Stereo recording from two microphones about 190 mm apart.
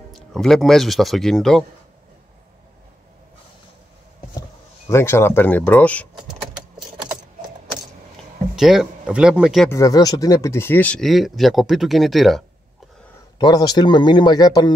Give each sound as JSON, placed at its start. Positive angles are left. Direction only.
{"t": 0.1, "sound": "speech", "side_deg": 0}
{"t": 4.4, "sound": "speech", "side_deg": 15}
{"t": 8.5, "sound": "speech", "side_deg": 0}
{"t": 9.7, "sound": "speech", "side_deg": 15}
{"t": 13.4, "sound": "speech", "side_deg": 20}